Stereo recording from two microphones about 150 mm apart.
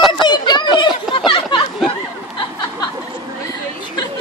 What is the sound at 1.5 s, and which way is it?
Chatter, 30° left (ahead or behind).